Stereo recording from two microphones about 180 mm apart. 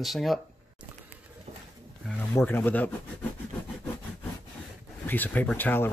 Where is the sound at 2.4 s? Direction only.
10° left (ahead or behind).